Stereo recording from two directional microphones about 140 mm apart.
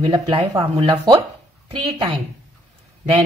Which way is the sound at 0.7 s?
35° right (ahead or behind).